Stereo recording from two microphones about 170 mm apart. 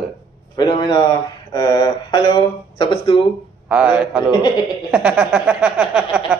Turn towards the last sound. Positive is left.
turn(degrees=-5)  # may be behind; listen again after turning